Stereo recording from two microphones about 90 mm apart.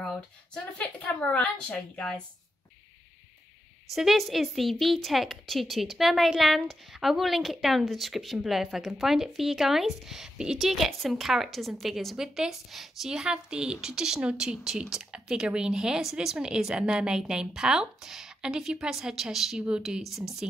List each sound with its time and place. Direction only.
0.7 s a woman's voice: 15° left (ahead or behind)
3.9 s a woman's voice: centre (ahead or behind)